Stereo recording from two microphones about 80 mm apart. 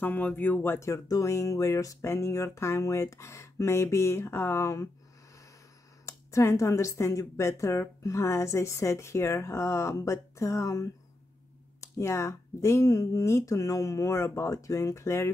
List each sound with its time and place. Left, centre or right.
0.0 s speech: left
0.7 s speech: left
6.0 s speech: left